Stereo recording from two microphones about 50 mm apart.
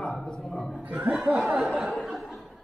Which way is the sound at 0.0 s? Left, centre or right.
Centre.